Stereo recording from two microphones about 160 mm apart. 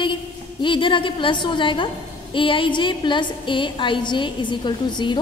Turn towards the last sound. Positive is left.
turn(degrees=30)  # may be behind; listen again after turning